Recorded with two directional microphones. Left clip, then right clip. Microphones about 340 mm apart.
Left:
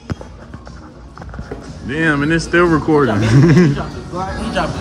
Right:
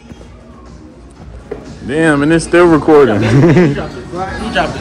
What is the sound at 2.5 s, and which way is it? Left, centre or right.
Speech, right.